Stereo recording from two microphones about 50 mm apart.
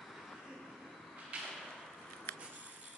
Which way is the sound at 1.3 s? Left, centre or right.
Right.